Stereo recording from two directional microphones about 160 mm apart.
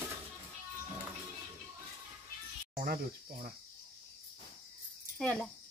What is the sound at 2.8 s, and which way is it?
Speech, 65° right (ahead or behind).